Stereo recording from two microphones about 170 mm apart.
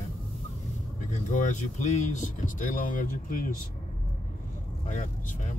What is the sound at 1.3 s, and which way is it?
Speech, 45° left (ahead or behind).